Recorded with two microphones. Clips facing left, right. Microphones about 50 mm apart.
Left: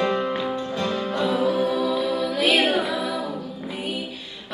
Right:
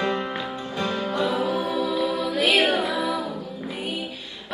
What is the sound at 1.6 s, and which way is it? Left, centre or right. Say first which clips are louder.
Music: left 3 dB; right.